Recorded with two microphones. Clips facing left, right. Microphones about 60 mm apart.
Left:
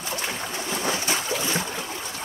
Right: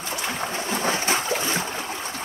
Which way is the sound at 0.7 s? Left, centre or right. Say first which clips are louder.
Right 2 dB; right.